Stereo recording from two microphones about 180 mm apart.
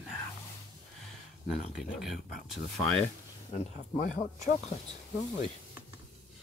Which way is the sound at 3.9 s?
50° left (ahead or behind).